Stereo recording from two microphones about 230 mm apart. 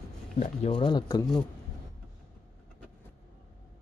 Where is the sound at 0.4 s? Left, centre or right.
Left.